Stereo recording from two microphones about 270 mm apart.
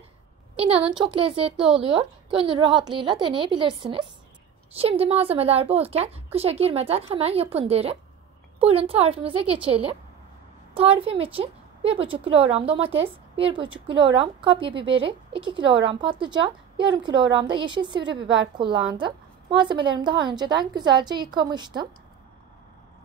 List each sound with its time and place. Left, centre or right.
0.6 s a woman's voice: right